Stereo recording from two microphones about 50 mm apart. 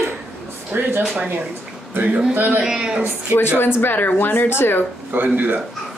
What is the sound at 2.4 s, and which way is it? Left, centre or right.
Speech, right.